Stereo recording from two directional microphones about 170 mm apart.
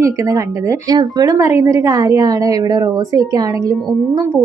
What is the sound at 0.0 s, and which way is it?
A woman's voice, 20° right (ahead or behind).